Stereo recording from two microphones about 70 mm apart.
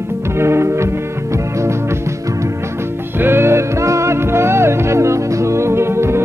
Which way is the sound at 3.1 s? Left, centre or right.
Right.